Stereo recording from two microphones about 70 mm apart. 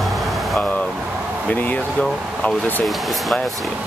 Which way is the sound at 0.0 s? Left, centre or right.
Centre.